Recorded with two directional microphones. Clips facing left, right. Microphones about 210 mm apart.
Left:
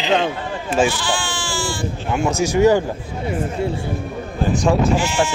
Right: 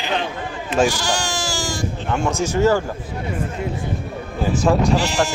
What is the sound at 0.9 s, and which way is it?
Sheep, 40° right (ahead or behind).